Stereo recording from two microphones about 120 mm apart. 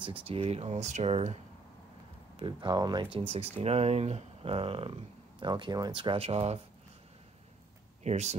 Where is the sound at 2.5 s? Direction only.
40° right (ahead or behind).